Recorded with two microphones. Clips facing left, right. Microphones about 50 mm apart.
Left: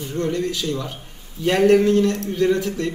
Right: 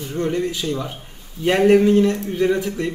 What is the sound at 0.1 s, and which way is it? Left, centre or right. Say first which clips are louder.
A man's voice: right 1 dB; centre.